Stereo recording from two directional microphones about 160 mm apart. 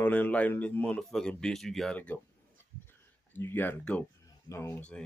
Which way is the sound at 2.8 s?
15° left (ahead or behind).